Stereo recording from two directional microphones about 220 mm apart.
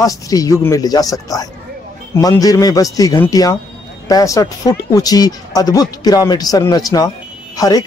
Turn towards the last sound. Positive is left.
turn(degrees=15)  # may be behind; listen again after turning